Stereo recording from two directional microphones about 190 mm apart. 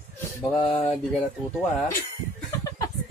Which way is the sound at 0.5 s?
30° left (ahead or behind).